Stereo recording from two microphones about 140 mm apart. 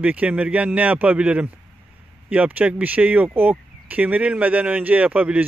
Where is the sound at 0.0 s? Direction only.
10° right (ahead or behind).